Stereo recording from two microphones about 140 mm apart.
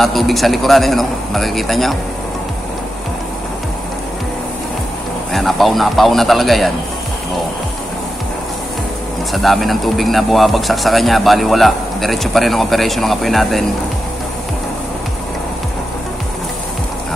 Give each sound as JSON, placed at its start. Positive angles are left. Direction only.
{"t": 0.0, "sound": "speech", "side_deg": 0}
{"t": 5.3, "sound": "speech", "side_deg": 0}
{"t": 9.3, "sound": "speech", "side_deg": 0}